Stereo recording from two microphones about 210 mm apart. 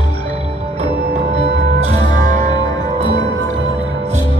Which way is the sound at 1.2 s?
55° right (ahead or behind).